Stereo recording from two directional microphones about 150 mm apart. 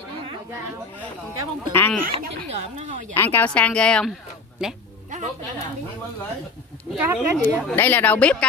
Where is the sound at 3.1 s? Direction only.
15° left (ahead or behind).